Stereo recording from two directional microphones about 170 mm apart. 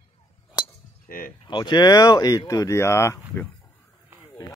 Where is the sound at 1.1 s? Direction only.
60° left (ahead or behind).